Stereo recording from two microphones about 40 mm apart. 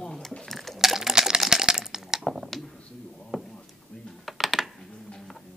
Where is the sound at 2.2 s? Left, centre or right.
Centre.